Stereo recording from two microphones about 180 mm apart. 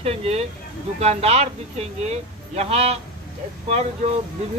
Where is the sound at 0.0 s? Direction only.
35° right (ahead or behind).